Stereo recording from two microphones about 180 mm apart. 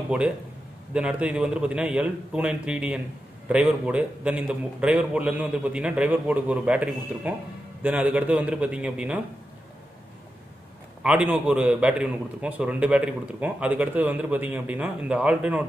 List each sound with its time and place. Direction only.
0.9 s a man's voice: 5° right (ahead or behind)
11.0 s a man's voice: 5° right (ahead or behind)